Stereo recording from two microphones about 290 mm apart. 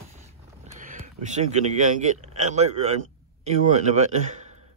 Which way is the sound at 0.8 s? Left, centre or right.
Right.